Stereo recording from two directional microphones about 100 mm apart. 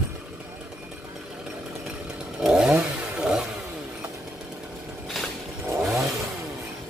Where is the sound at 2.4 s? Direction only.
5° right (ahead or behind).